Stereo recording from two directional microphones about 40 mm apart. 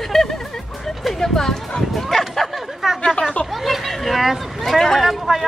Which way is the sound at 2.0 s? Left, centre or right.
Centre.